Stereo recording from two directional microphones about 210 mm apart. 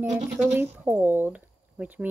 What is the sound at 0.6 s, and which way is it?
Speech, 10° right (ahead or behind).